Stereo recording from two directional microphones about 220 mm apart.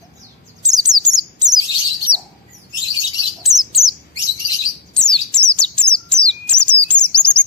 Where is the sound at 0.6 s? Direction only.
15° right (ahead or behind).